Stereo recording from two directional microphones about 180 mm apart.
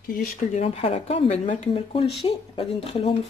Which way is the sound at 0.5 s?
35° left (ahead or behind).